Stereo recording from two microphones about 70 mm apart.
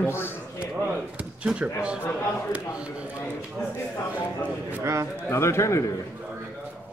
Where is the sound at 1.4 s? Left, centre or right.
Centre.